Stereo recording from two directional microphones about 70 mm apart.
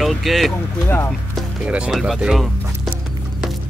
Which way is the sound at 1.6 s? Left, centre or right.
Centre.